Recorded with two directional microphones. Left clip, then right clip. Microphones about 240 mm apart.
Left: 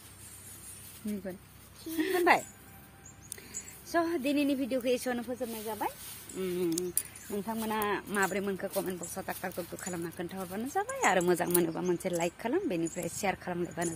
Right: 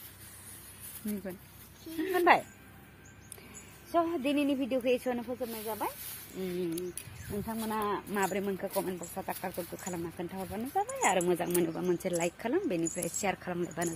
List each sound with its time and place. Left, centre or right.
2.1 s speech: centre
3.9 s speech: centre
6.4 s speech: centre
11.8 s speech: centre